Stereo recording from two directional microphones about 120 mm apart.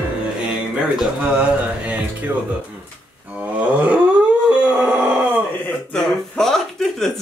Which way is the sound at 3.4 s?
10° right (ahead or behind).